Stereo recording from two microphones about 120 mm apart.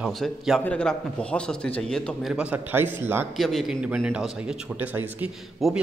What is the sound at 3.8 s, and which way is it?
A man's voice, 10° right (ahead or behind).